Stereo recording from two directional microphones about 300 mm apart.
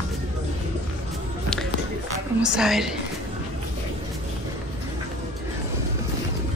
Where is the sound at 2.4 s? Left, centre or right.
Centre.